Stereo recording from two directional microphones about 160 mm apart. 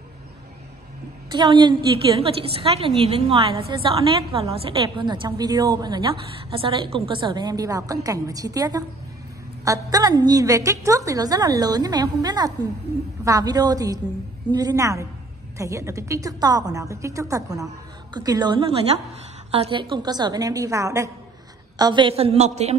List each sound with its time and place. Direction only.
1.3 s a woman's voice: 30° right (ahead or behind)